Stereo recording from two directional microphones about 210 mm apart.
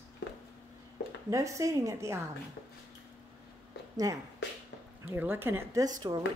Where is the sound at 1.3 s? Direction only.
15° right (ahead or behind).